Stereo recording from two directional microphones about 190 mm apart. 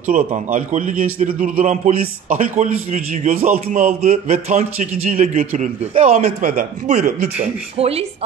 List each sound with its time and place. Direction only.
0.0 s a man's voice: 40° right (ahead or behind)
3.7 s a man's voice: 35° right (ahead or behind)
4.1 s a man's voice: 45° right (ahead or behind)